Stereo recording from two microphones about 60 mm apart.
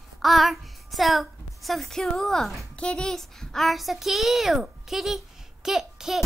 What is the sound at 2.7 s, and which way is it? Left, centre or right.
A child's voice, centre.